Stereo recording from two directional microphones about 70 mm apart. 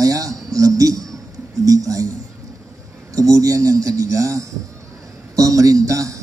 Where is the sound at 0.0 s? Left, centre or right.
Right.